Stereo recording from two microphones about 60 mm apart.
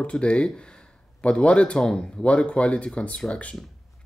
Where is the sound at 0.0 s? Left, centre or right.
Centre.